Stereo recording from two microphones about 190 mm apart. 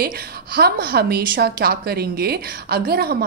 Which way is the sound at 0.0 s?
55° right (ahead or behind).